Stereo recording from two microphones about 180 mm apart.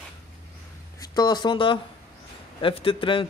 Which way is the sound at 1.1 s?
25° left (ahead or behind).